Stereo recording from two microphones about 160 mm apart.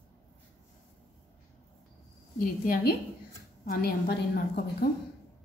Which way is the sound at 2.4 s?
60° left (ahead or behind).